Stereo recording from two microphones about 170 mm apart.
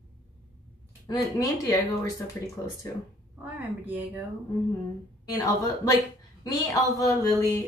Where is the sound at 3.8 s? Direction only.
10° right (ahead or behind).